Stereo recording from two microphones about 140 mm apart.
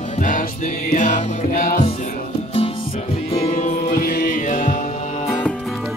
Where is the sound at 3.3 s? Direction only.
45° left (ahead or behind).